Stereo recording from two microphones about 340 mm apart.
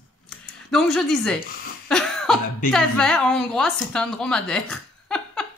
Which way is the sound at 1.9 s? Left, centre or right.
Centre.